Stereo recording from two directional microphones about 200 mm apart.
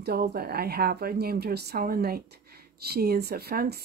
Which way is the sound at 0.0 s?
50° right (ahead or behind).